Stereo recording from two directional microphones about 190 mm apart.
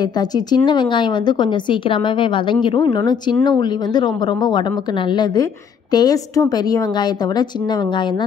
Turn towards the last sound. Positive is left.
turn(degrees=20)  # may be behind; listen again after turning